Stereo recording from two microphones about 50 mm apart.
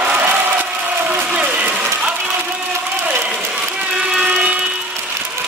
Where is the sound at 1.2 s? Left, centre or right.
Right.